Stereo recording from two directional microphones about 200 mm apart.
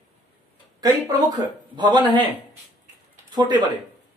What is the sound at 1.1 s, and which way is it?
Speech, 20° right (ahead or behind).